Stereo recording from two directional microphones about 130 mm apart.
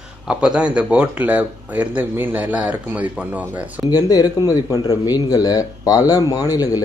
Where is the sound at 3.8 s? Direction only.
30° left (ahead or behind).